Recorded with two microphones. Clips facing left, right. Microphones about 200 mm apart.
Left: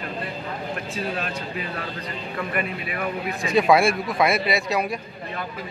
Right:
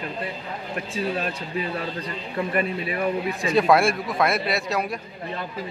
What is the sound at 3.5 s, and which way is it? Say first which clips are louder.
Speech: left 1 dB; centre (ahead or behind).